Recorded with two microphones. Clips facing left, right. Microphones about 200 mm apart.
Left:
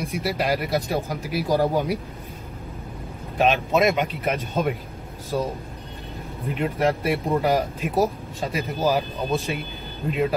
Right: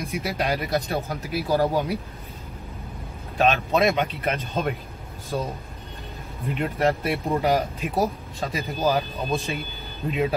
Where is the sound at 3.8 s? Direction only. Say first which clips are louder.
Left 1 dB; centre (ahead or behind).